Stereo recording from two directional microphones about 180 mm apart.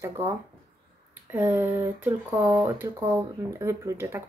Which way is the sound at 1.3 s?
10° right (ahead or behind).